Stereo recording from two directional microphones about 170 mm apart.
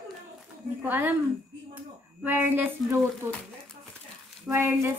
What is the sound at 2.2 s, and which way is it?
Speech, 10° right (ahead or behind).